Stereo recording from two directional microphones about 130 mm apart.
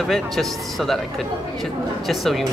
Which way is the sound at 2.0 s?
Centre (ahead or behind).